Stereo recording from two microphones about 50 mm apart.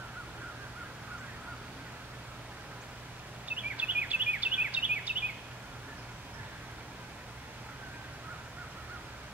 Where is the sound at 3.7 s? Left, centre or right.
Right.